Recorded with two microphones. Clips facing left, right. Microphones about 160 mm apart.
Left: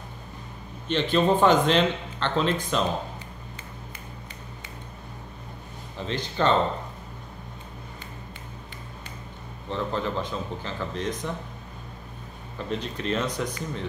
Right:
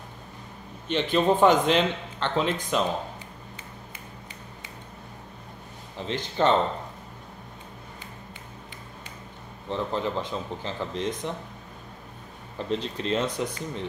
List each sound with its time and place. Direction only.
0.8 s speech: 15° right (ahead or behind)
6.0 s speech: 20° right (ahead or behind)
9.7 s speech: 20° right (ahead or behind)
12.5 s speech: 25° right (ahead or behind)